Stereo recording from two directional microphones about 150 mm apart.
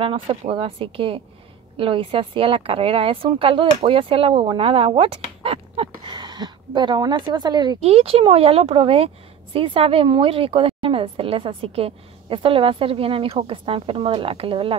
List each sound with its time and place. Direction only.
0.0 s a woman's voice: 35° right (ahead or behind)
7.8 s a woman's voice: 40° right (ahead or behind)